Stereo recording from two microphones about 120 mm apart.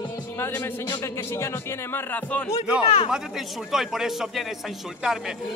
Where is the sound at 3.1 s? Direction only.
5° right (ahead or behind).